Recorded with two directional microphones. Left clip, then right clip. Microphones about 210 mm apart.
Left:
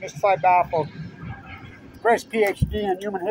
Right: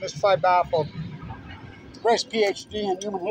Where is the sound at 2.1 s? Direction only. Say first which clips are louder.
Left 2 dB; centre (ahead or behind).